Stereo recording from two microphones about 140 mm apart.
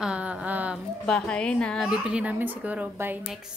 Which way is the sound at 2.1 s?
10° right (ahead or behind).